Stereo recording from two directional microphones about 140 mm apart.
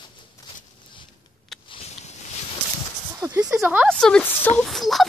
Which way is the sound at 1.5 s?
Centre (ahead or behind).